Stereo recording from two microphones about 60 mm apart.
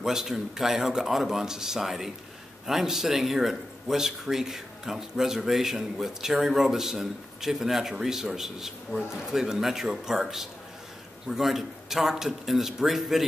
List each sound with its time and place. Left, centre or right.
0.0 s speech: centre